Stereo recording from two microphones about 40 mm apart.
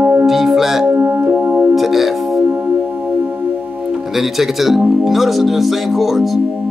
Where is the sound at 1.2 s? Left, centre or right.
Right.